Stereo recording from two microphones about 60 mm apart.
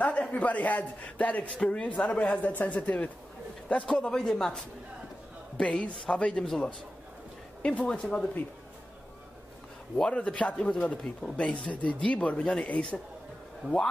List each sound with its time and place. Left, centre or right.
0.0 s a man's voice: left
7.6 s a man's voice: centre
9.9 s speech: centre